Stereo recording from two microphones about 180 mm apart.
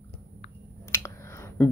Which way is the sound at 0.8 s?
15° left (ahead or behind).